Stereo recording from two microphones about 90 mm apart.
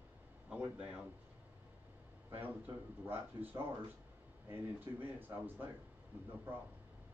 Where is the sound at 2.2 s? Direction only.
20° right (ahead or behind).